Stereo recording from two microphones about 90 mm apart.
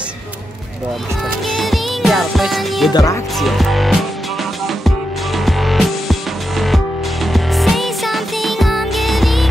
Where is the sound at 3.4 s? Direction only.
Centre (ahead or behind).